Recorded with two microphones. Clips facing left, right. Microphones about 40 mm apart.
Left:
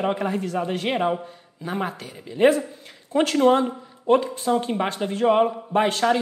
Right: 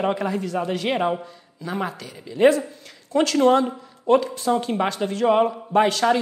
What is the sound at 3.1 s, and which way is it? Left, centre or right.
Speech, left.